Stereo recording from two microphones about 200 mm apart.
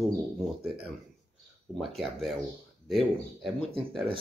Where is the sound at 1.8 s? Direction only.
Centre (ahead or behind).